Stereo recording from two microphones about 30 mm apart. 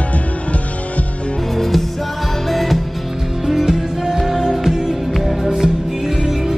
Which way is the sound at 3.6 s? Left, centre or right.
Centre.